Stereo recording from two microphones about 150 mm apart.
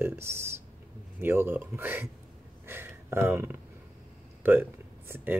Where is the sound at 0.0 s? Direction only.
15° right (ahead or behind).